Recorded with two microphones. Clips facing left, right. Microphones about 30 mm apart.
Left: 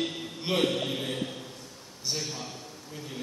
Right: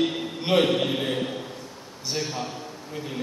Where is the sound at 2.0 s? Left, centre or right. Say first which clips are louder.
Right 5 dB; centre.